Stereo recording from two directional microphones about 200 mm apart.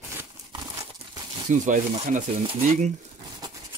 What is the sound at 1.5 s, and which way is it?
Speech, 40° right (ahead or behind).